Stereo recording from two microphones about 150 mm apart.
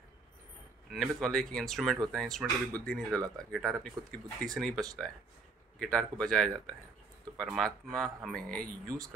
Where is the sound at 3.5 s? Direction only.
Centre (ahead or behind).